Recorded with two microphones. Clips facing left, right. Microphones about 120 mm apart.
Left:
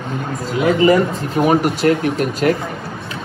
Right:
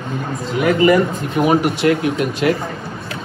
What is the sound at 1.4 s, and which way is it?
Speech, 35° left (ahead or behind).